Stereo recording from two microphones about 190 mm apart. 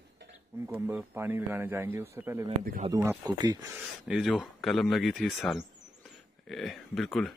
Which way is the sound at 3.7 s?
5° right (ahead or behind).